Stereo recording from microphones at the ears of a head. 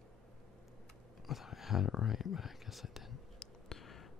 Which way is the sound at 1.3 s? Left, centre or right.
Left.